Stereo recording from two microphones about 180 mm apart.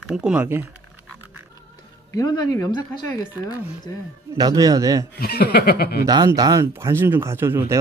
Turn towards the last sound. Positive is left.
turn(degrees=-15)  # may be behind; listen again after turning